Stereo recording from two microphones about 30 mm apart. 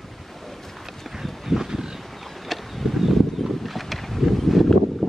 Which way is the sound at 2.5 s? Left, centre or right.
Centre.